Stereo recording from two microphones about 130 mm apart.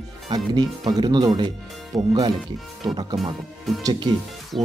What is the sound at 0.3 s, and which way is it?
Speech, 35° right (ahead or behind).